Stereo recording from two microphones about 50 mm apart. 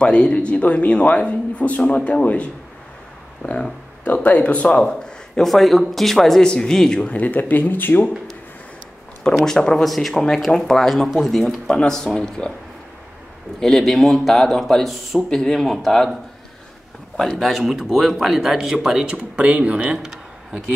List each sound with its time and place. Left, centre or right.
0.0 s a man's voice: left
3.4 s speech: left
4.0 s speech: left; by 7.0 s centre
7.0 s speech: left
9.4 s speech: centre
9.8 s speech: centre
13.6 s speech: centre
17.2 s speech: centre
19.1 s speech: right
19.9 s speech: centre